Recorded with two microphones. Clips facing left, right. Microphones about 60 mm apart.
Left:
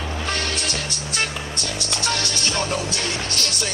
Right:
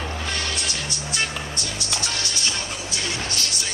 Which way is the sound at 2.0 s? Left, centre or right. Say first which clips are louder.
Left 5 dB; left.